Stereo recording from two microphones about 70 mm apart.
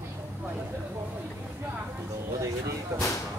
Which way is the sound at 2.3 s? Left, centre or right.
Right.